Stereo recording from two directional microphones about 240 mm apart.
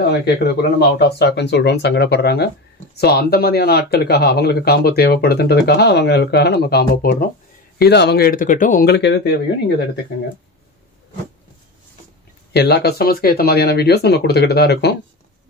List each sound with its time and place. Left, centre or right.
0.2 s speech: left
12.5 s speech: left